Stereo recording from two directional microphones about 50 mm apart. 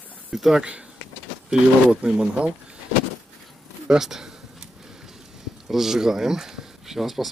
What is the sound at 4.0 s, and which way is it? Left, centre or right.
Speech, centre.